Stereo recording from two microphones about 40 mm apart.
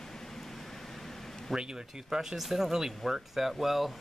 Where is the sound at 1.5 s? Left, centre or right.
Centre.